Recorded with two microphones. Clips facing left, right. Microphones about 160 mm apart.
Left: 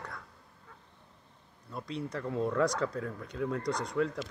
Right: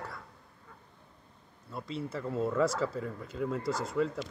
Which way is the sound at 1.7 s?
Centre (ahead or behind).